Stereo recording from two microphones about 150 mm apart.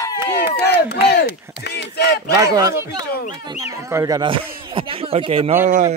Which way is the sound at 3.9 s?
20° right (ahead or behind).